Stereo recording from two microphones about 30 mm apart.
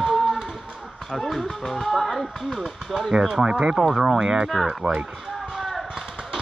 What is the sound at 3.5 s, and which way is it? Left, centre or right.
Speech, right.